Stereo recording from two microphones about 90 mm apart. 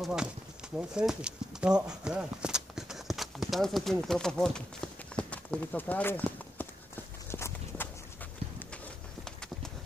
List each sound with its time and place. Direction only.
0.0 s speech: 5° right (ahead or behind); by 6.7 s 20° left (ahead or behind)
7.2 s walk: 30° left (ahead or behind)
9.2 s a sound: 5° left (ahead or behind)